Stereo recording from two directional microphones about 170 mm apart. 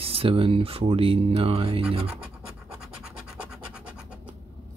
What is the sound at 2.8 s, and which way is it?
Scratch, 5° right (ahead or behind).